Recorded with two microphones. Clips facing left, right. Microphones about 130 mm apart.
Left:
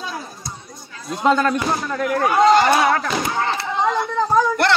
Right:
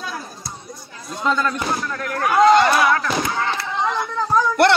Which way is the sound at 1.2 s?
50° left (ahead or behind).